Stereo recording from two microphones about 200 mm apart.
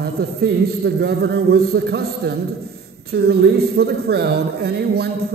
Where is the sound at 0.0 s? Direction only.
55° right (ahead or behind).